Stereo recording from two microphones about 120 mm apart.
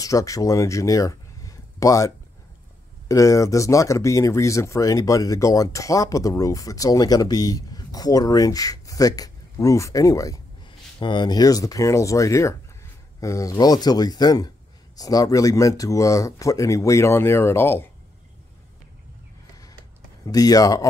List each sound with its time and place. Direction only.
0.0 s speech: 30° left (ahead or behind)
11.0 s speech: 40° left (ahead or behind); by 17.8 s 20° left (ahead or behind)
20.2 s speech: 30° left (ahead or behind)